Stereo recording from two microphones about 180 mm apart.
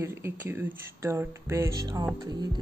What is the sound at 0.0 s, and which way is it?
Speech, 15° right (ahead or behind).